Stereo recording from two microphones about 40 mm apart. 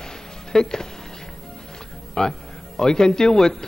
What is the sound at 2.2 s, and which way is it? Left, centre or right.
A man's voice, centre.